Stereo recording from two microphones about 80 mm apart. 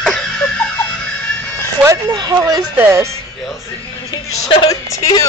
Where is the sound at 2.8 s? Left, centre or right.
Right.